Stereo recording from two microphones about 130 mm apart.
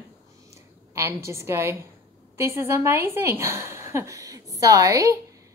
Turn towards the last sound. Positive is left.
turn(degrees=-25)  # may be behind; listen again after turning